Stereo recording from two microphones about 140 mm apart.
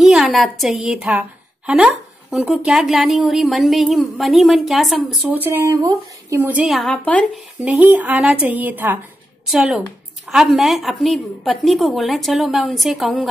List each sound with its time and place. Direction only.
0.0 s a woman's voice: centre (ahead or behind)
2.3 s a woman's voice: centre (ahead or behind)
5.3 s speech: 15° right (ahead or behind)
6.5 s a woman's voice: centre (ahead or behind)
7.5 s speech: 10° right (ahead or behind)
9.5 s a woman's voice: centre (ahead or behind)